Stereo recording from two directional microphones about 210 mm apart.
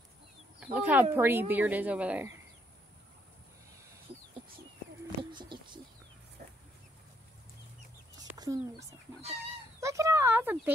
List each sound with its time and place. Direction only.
0.6 s a woman's voice: 5° right (ahead or behind)
5.3 s a sound: 20° right (ahead or behind)
8.4 s speech: 15° right (ahead or behind)